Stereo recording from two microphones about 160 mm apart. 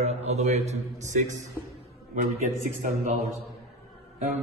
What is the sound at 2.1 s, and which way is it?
A man's voice, 50° right (ahead or behind).